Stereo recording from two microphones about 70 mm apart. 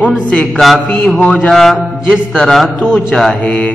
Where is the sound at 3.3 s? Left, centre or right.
Left.